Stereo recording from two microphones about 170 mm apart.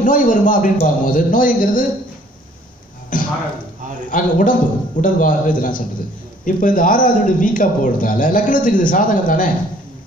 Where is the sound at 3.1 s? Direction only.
55° left (ahead or behind).